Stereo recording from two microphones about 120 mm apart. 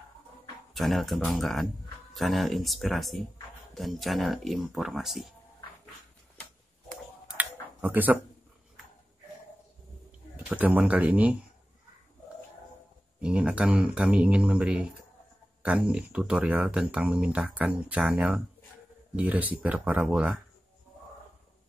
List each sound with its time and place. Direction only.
0.7 s speech: centre (ahead or behind)
7.3 s a sound: 15° right (ahead or behind)
10.5 s speech: 15° right (ahead or behind)
13.2 s speech: 10° right (ahead or behind)